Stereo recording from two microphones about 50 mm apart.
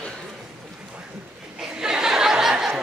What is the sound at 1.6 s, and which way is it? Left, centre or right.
Chuckle, centre.